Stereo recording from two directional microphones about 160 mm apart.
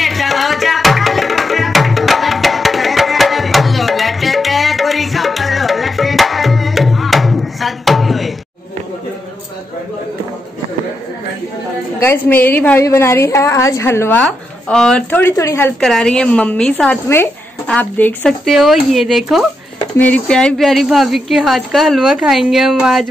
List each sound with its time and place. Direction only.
0.0 s music: centre (ahead or behind)
12.0 s a woman's voice: 15° left (ahead or behind)
14.2 s a woman's voice: 5° left (ahead or behind)
15.8 s speech: 5° left (ahead or behind)